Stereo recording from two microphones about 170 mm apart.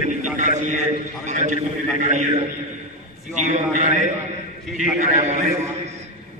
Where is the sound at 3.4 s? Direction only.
45° right (ahead or behind).